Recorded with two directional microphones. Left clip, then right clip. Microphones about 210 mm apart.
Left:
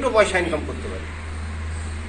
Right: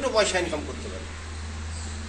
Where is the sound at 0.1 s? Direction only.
25° right (ahead or behind).